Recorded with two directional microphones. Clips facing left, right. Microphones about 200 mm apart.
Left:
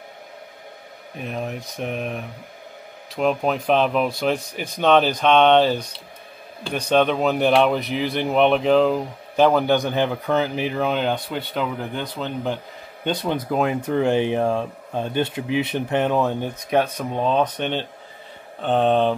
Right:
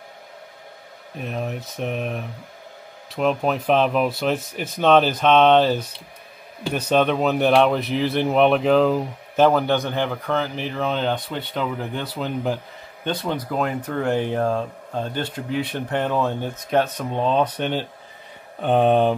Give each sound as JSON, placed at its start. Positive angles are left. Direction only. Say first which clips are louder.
{"t": 1.2, "sound": "speech", "louder": "even", "side_deg": 0}
{"t": 9.7, "sound": "speech", "louder": "left 2 dB", "side_deg": 15}
{"t": 13.3, "sound": "speech", "louder": "left 3 dB", "side_deg": 15}
{"t": 14.4, "sound": "speech", "louder": "left 1 dB", "side_deg": 10}